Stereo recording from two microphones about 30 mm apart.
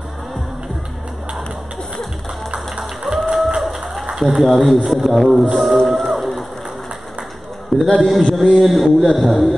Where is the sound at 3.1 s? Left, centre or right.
Centre.